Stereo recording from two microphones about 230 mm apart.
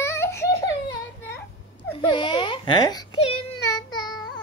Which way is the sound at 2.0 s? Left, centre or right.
Centre.